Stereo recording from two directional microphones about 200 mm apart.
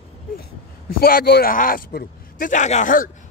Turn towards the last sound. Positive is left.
turn(degrees=40)  # may be behind; listen again after turning